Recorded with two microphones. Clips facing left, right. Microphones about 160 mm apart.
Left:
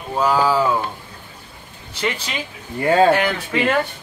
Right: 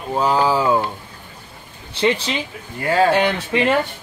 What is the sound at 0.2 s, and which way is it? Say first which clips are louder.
Speech: even; 20° right (ahead or behind).